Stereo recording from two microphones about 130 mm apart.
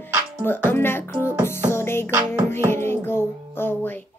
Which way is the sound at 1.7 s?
20° left (ahead or behind).